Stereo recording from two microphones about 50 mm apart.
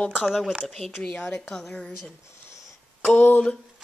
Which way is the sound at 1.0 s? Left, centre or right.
Centre.